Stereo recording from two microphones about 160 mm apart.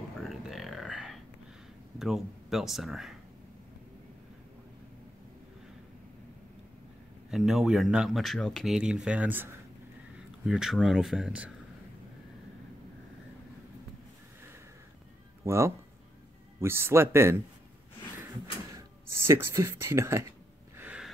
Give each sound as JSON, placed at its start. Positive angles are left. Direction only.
{"t": 0.2, "sound": "a sound", "side_deg": 0}
{"t": 2.0, "sound": "speech", "side_deg": 0}
{"t": 7.2, "sound": "speech", "side_deg": -5}
{"t": 15.4, "sound": "speech", "side_deg": -15}
{"t": 18.8, "sound": "speech", "side_deg": -15}
{"t": 20.7, "sound": "a sound", "side_deg": -10}